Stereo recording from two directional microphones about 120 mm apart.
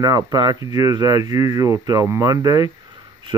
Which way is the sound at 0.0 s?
30° right (ahead or behind).